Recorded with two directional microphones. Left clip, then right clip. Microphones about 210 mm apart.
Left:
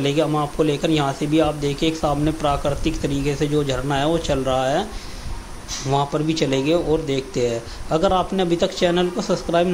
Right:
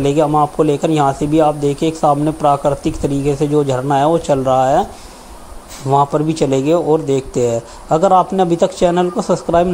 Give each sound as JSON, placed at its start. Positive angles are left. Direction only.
{"t": 0.0, "sound": "speech", "side_deg": -25}
{"t": 5.9, "sound": "speech", "side_deg": -25}